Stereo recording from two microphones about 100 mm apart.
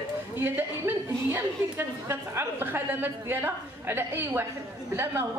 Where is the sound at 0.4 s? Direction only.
20° right (ahead or behind).